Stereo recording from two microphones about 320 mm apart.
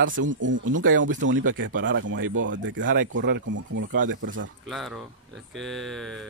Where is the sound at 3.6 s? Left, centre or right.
Right.